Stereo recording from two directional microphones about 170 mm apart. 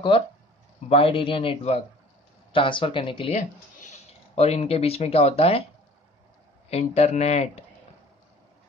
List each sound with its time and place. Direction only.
0.8 s speech: 35° left (ahead or behind)
4.4 s speech: 35° left (ahead or behind)
6.7 s speech: 40° left (ahead or behind)